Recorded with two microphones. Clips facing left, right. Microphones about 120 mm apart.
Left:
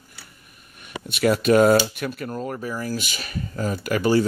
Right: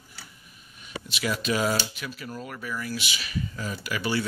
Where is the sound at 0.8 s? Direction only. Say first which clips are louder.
Left 9 dB; 55° left (ahead or behind).